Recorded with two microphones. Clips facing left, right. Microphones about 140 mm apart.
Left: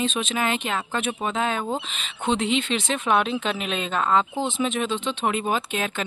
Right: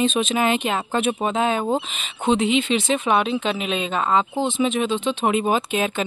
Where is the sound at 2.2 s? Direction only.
5° right (ahead or behind).